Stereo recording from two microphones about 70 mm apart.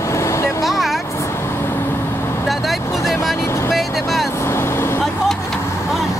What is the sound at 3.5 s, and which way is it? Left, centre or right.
Vehicle, left.